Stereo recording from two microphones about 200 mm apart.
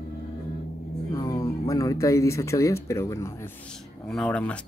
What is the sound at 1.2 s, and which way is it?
Speech, 15° left (ahead or behind).